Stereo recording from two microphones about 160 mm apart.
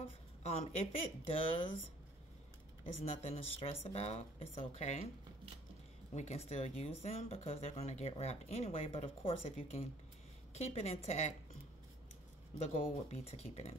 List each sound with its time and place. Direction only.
0.4 s speech: 40° left (ahead or behind)
2.8 s speech: 40° left (ahead or behind)
6.1 s a woman's voice: 45° left (ahead or behind)
13.1 s speech: 40° left (ahead or behind)